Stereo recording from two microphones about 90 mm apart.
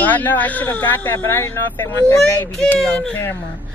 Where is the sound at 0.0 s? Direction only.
20° left (ahead or behind).